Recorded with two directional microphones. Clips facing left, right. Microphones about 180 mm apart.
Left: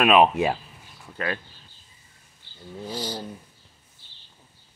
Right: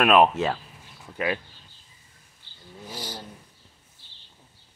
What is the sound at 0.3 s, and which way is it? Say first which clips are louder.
Speech: left 2 dB; 15° left (ahead or behind).